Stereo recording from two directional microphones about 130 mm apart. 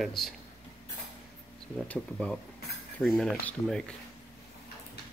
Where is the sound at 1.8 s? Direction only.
10° left (ahead or behind).